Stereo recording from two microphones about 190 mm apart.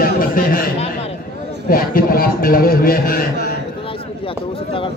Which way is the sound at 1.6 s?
50° left (ahead or behind).